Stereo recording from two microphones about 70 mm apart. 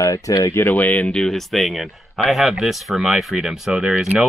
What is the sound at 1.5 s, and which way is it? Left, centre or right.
Speech, centre.